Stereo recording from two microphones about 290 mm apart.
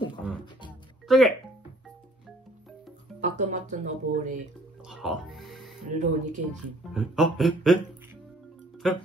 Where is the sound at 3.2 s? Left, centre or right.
Right.